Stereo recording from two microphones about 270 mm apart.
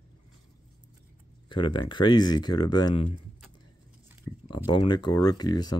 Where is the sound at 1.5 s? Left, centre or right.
Centre.